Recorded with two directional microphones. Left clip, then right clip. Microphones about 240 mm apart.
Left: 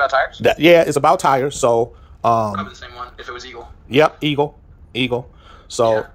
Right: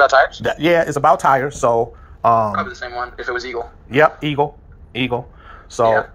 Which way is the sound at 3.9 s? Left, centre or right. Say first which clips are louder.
Even; left.